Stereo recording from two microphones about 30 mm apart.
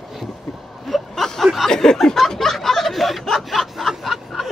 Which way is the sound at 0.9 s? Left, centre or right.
Centre.